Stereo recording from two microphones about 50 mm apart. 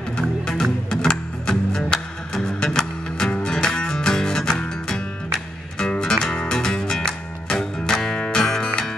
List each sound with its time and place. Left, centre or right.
0.5 s music: centre